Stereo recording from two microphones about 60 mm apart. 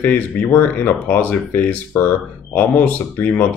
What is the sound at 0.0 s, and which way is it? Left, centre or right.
Speech, left.